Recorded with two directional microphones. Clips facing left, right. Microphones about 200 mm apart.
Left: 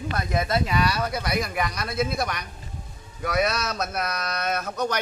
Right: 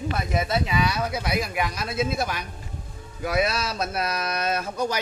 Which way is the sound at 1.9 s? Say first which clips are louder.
Even; 25° right (ahead or behind).